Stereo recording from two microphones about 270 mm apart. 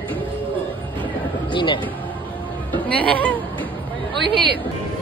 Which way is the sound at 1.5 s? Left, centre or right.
Centre.